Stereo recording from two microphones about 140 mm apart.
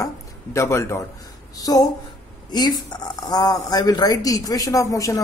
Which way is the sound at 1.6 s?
25° left (ahead or behind).